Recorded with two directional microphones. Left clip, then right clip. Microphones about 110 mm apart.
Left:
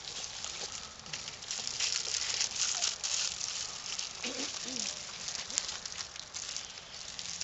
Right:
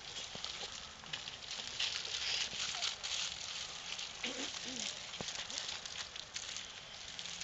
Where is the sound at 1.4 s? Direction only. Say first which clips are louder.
Left 5 dB; 30° left (ahead or behind).